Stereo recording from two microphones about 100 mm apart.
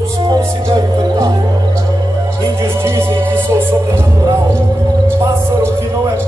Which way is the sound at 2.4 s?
30° right (ahead or behind).